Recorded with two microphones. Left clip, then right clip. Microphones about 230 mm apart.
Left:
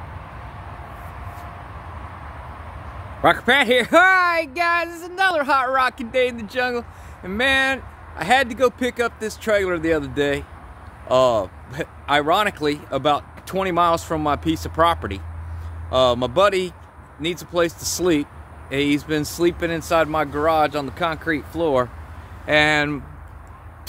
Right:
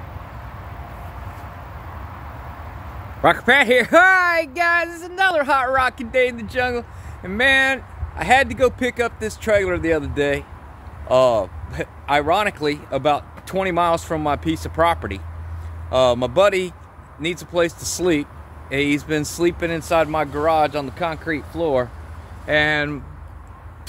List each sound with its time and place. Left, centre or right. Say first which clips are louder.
3.2 s speech: right 1 dB; centre